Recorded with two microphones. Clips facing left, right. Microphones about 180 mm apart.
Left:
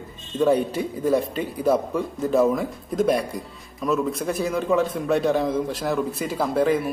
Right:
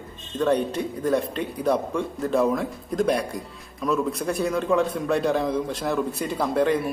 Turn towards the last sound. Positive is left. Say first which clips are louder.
# left 1 dB
turn(degrees=0)  # may be behind; listen again after turning